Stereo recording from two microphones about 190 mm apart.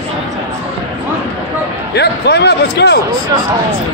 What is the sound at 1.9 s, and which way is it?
A man's voice, 60° left (ahead or behind).